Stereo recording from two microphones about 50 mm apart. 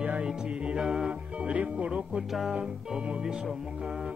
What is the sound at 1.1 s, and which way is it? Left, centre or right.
Music, right.